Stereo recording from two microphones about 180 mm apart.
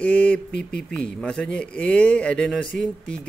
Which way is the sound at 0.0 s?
5° left (ahead or behind).